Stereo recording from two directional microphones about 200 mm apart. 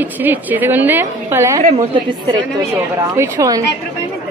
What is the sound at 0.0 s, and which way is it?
A woman's voice, 10° right (ahead or behind).